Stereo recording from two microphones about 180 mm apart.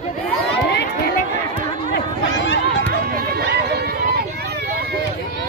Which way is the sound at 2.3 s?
90° left.